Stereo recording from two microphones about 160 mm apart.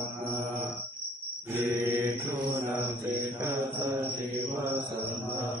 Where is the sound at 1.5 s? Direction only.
15° right (ahead or behind).